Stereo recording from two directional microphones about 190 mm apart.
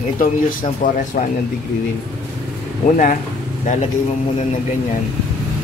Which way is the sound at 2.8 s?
40° left (ahead or behind).